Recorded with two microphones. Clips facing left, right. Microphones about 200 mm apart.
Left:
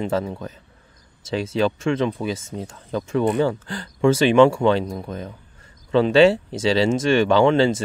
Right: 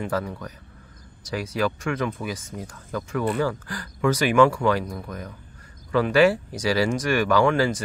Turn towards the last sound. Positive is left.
turn(degrees=25)  # may be behind; listen again after turning